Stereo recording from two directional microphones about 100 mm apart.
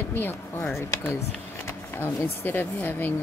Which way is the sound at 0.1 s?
20° left (ahead or behind).